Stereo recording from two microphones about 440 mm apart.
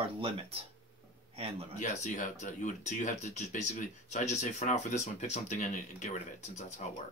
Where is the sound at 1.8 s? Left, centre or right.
Centre.